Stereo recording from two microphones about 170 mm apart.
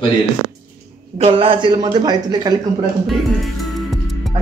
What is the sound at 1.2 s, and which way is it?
Speech, 30° right (ahead or behind).